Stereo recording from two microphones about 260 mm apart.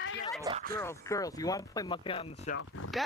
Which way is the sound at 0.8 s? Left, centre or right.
Centre.